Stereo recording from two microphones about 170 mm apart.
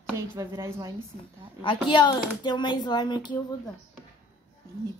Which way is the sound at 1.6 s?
30° left (ahead or behind).